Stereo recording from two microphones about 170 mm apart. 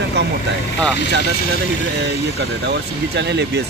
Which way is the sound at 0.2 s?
90° right.